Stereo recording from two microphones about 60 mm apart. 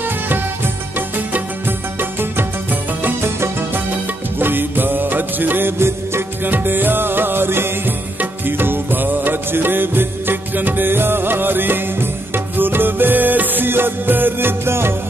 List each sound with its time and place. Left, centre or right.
0.9 s music: right
4.4 s music: right
6.5 s music: right